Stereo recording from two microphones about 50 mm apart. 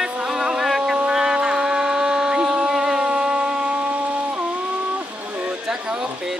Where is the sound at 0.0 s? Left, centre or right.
Centre.